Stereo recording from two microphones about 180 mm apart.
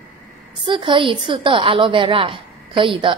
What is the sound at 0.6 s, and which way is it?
A woman's voice, 25° right (ahead or behind).